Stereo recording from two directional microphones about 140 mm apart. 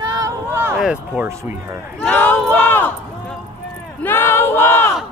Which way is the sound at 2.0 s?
15° left (ahead or behind).